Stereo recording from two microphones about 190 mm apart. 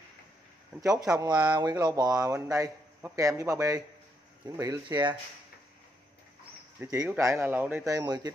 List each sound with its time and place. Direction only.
0.7 s speech: 15° right (ahead or behind)
6.8 s speech: 15° right (ahead or behind)